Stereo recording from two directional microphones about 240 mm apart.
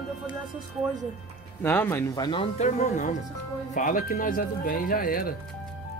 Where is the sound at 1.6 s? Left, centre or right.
Centre; by 5.3 s left.